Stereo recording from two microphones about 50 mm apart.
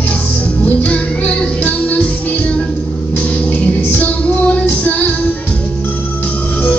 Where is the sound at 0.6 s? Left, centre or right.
Left.